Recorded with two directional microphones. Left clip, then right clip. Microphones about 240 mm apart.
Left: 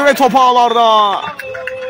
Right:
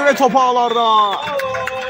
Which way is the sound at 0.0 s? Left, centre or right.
Left.